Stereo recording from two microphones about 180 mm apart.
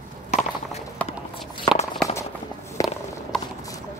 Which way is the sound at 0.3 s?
35° left (ahead or behind).